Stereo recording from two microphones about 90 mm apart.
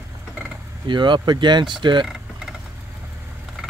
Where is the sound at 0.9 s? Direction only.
60° right (ahead or behind).